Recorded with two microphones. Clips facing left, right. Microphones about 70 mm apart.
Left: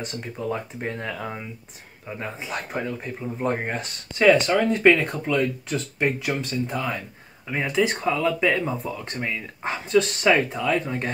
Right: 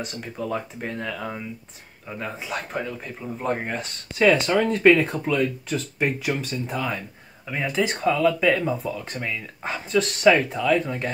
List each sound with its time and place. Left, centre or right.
0.0 s speech: centre
2.3 s speech: centre
8.0 s speech: centre
9.2 s speech: centre